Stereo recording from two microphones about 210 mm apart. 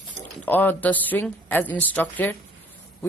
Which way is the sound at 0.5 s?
10° left (ahead or behind).